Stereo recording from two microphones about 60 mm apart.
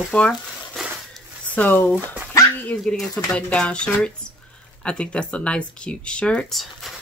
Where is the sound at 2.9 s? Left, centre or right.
Centre.